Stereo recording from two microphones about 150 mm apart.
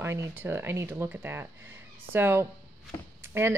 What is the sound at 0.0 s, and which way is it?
A woman's voice, 15° right (ahead or behind).